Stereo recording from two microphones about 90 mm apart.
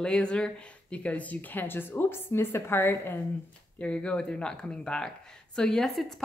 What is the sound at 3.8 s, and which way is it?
Speech, 10° left (ahead or behind).